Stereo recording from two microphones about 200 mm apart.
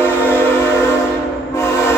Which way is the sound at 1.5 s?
10° left (ahead or behind).